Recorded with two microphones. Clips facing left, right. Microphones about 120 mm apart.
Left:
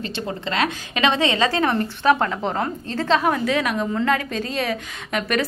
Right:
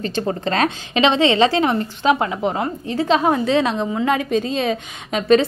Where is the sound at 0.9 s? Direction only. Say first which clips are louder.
Right 5 dB; 25° right (ahead or behind).